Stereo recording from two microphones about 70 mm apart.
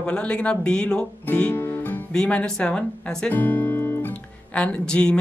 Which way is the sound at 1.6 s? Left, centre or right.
Left.